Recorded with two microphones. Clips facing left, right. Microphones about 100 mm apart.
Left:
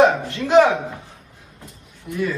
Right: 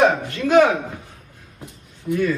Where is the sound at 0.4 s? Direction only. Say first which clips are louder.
Left 1 dB; 30° left (ahead or behind).